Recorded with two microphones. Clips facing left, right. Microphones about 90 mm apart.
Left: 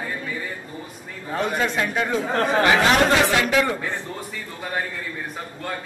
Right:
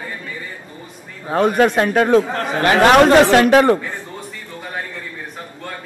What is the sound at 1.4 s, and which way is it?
Speech, 55° right (ahead or behind).